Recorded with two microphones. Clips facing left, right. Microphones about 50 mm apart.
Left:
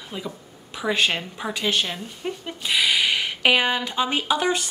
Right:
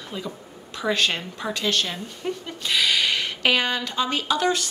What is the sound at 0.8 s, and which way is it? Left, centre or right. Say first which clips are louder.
Speech: left 1 dB; centre.